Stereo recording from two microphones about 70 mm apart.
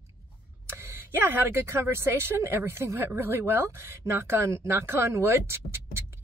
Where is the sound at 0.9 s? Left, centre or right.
Right.